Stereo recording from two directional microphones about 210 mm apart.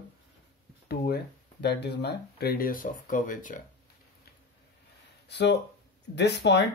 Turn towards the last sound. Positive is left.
turn(degrees=55)  # may be behind; listen again after turning